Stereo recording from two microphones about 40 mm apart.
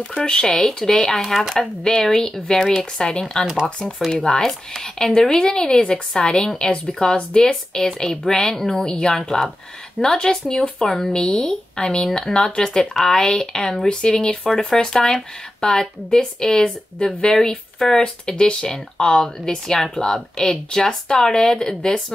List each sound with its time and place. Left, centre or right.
0.0 s speech: left
0.3 s speech: centre
4.4 s speech: centre
7.2 s speech: left
7.7 s speech: centre